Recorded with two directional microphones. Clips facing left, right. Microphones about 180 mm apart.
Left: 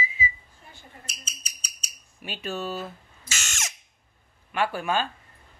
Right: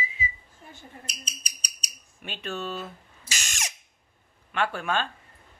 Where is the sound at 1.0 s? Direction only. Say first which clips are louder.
Right 3 dB; 15° right (ahead or behind).